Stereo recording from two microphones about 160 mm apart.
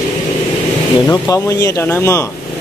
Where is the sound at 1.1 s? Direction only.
20° left (ahead or behind).